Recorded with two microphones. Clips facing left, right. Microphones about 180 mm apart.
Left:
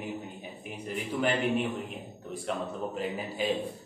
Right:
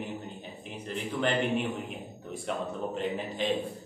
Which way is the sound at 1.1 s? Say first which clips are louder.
Even; 5° left (ahead or behind).